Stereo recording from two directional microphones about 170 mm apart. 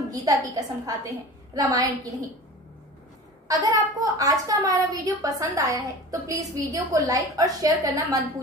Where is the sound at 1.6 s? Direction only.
25° right (ahead or behind).